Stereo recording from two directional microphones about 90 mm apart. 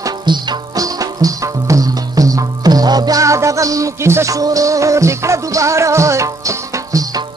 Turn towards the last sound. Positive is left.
turn(degrees=-35)  # may be behind; listen again after turning